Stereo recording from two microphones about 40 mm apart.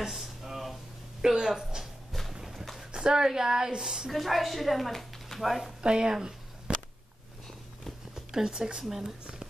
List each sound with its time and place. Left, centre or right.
0.0 s a sound: centre
1.2 s speech: centre
2.9 s a woman's voice: centre
4.1 s a woman's voice: centre
5.8 s speech: right
6.7 s whip: right
8.1 s a sound: centre
8.8 s a woman's voice: centre
9.2 s a sound: centre